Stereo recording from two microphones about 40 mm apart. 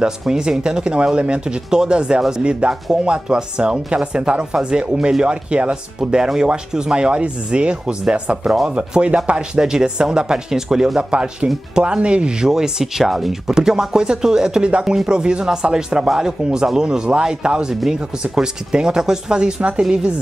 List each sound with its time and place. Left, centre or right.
0.2 s speech: centre
5.9 s speech: centre
9.6 s speech: centre